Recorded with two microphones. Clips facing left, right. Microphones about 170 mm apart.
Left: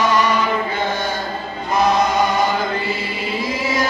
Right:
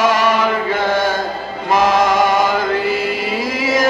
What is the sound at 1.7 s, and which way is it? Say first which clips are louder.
Chant: right 3 dB; 90° right.